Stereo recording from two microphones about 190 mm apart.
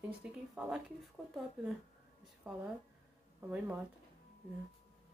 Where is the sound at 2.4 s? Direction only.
5° right (ahead or behind).